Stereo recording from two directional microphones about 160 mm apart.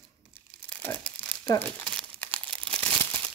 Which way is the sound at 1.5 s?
10° left (ahead or behind).